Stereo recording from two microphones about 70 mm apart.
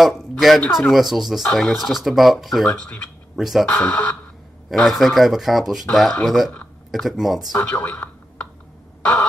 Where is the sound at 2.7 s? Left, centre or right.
Centre.